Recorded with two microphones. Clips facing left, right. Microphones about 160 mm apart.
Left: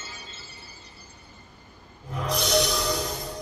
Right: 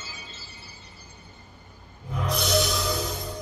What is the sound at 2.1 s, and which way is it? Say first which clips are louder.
Music: left 1 dB; centre (ahead or behind).